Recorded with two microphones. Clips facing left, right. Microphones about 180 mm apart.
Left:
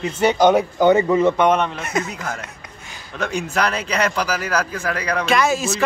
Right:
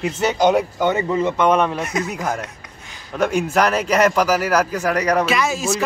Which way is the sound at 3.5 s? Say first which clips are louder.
Right 4 dB; 45° right (ahead or behind).